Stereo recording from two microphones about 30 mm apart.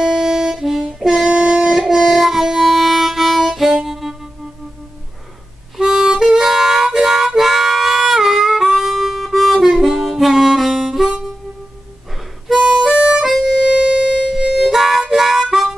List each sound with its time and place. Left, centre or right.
0.0 s saxophone: centre
0.7 s harmonica: centre
1.3 s a sound: right
1.6 s music: centre
5.8 s harmonica: right
6.4 s harmonica: centre
12.5 s harmonica: right
13.6 s music: right
14.3 s music: centre
15.0 s harmonica: centre